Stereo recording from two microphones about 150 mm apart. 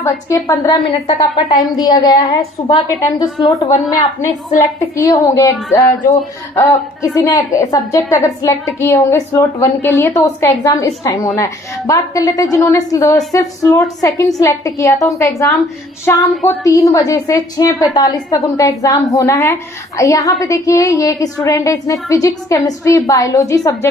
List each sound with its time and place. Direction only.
0.0 s a woman's voice: 20° left (ahead or behind)
4.9 s a woman's voice: 20° left (ahead or behind)
16.4 s a woman's voice: 20° left (ahead or behind)